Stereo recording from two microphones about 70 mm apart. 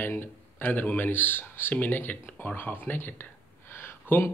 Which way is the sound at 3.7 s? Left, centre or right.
Left.